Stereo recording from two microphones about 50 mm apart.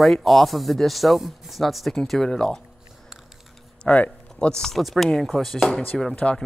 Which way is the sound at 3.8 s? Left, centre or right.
Left.